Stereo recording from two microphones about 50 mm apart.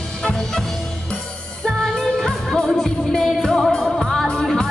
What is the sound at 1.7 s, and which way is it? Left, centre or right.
Music, centre.